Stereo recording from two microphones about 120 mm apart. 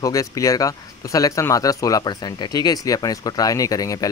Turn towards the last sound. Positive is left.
turn(degrees=30)  # may be behind; listen again after turning